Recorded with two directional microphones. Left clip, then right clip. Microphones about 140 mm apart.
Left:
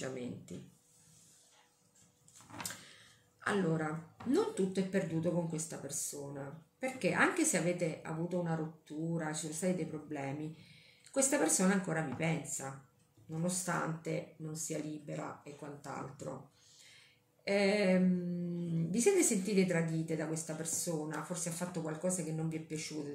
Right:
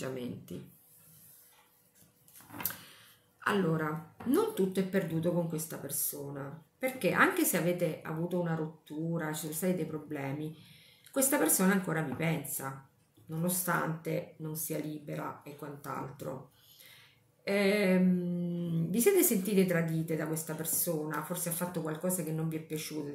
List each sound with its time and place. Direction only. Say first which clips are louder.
0.0 s speech: right 3 dB; 20° right (ahead or behind)
3.3 s speech: right 3 dB; 25° right (ahead or behind)
17.5 s speech: right 2 dB; 25° right (ahead or behind)